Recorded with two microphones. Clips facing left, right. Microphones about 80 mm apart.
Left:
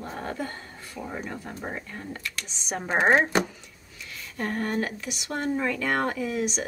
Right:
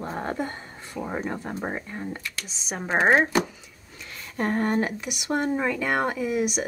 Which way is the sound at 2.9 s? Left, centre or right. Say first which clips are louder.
Right 1 dB; centre.